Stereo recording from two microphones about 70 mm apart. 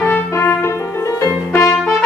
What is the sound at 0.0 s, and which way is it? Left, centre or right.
Music, left.